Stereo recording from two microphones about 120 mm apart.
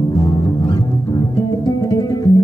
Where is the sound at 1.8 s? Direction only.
30° left (ahead or behind).